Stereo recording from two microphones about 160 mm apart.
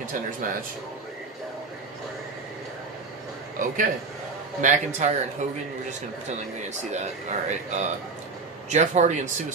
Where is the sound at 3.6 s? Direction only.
55° right (ahead or behind).